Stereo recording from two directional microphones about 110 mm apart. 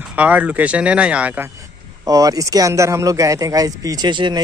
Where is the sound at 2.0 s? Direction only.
30° right (ahead or behind).